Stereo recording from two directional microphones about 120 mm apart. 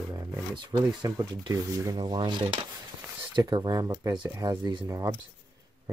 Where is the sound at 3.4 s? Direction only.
35° right (ahead or behind).